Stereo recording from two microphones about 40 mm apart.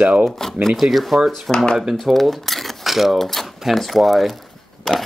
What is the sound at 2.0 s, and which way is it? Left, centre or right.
Speech, centre.